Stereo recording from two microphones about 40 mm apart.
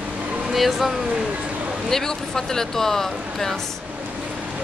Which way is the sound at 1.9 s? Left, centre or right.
Centre.